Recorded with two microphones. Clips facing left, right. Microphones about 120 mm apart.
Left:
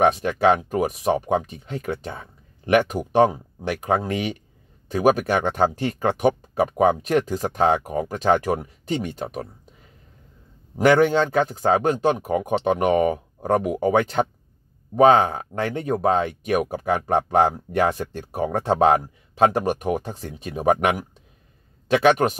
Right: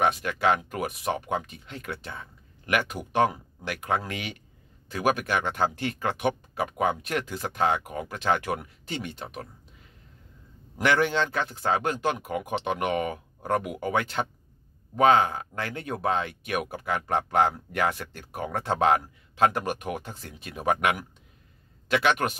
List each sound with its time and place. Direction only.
0.0 s speech: 35° left (ahead or behind)
10.8 s speech: 40° left (ahead or behind)